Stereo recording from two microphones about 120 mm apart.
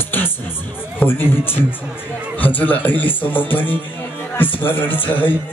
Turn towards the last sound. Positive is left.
turn(degrees=15)  # may be behind; listen again after turning